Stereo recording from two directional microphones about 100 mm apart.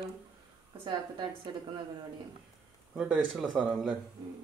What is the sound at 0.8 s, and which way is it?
Speech, 50° right (ahead or behind).